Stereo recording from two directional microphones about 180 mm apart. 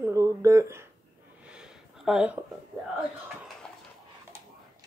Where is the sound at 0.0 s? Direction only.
15° right (ahead or behind).